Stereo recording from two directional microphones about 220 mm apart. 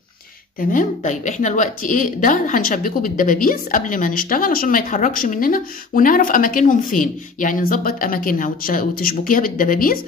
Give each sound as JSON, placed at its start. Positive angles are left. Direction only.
{"t": 0.6, "sound": "speech", "side_deg": 35}